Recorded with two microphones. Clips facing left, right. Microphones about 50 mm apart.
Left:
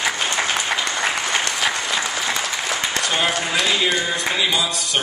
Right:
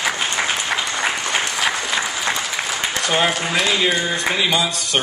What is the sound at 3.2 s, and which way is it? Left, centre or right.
Speech, centre.